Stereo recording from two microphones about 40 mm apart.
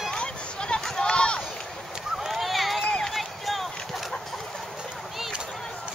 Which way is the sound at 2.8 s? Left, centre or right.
Centre.